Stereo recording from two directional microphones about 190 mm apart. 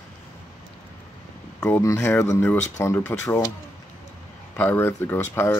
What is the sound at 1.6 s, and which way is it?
Speech, 15° left (ahead or behind).